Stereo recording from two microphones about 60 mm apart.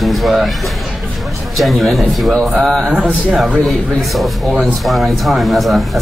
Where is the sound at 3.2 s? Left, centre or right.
Centre.